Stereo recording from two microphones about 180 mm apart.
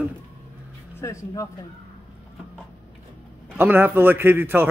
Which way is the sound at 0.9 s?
15° left (ahead or behind).